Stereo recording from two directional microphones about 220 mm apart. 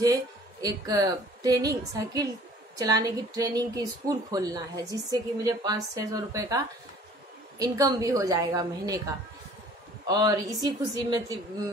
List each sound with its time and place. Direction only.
0.0 s a woman's voice: 15° right (ahead or behind)